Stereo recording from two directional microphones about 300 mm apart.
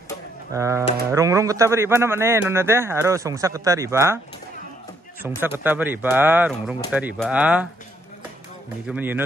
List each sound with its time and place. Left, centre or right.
0.5 s speech: centre
5.4 s speech: centre
8.8 s speech: centre